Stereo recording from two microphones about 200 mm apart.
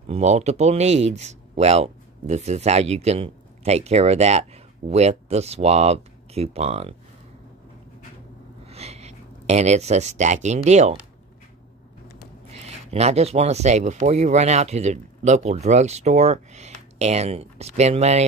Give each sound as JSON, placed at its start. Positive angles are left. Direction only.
{"t": 0.0, "sound": "speech", "side_deg": -30}
{"t": 8.6, "sound": "speech", "side_deg": -30}
{"t": 12.4, "sound": "speech", "side_deg": -30}